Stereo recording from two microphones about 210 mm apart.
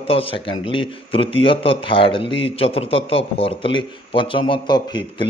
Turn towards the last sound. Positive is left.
turn(degrees=20)  # may be behind; listen again after turning